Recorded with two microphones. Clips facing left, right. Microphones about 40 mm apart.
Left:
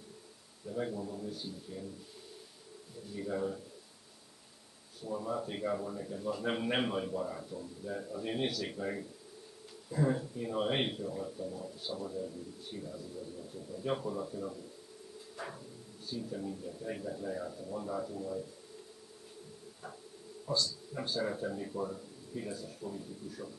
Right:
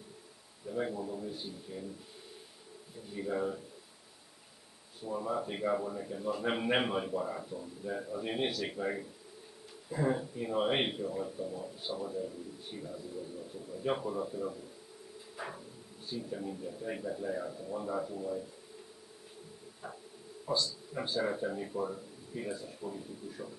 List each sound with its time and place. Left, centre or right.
0.7 s a man's voice: centre
3.1 s a man's voice: centre
5.0 s a man's voice: centre
19.8 s insect: centre
20.4 s a man's voice: right